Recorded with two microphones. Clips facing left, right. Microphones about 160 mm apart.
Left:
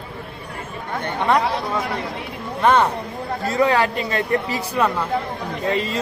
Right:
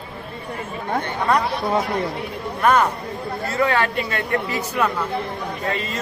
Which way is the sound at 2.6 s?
30° left (ahead or behind).